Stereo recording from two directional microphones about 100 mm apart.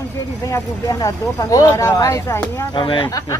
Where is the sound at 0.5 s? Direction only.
35° left (ahead or behind).